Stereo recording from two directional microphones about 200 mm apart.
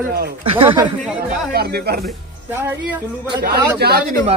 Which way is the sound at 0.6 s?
25° right (ahead or behind).